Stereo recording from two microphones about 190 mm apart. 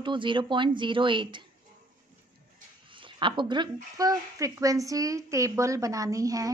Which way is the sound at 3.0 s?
25° right (ahead or behind).